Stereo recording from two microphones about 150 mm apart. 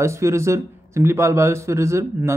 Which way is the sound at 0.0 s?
20° right (ahead or behind).